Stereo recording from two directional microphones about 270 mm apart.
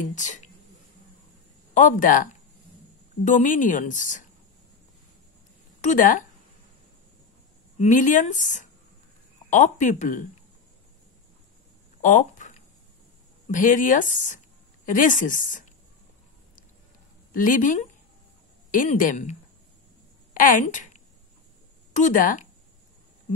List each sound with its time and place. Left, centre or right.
0.0 s speech: left
1.7 s speech: left
3.3 s speech: left
5.8 s speech: left
7.8 s speech: left
12.0 s a sound: left
13.5 s speech: left
17.3 s speech: left
20.3 s a woman's voice: left